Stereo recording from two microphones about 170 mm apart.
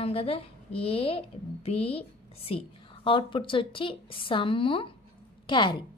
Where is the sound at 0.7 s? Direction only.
35° left (ahead or behind).